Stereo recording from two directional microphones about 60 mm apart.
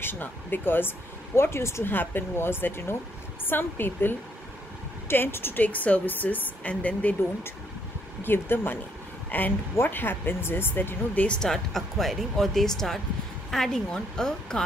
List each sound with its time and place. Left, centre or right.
0.0 s speech: left
1.9 s a woman's voice: left
8.2 s speech: left
9.3 s a woman's voice: left
11.2 s speech: centre